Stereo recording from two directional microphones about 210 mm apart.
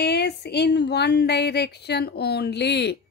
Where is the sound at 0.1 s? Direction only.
50° left (ahead or behind).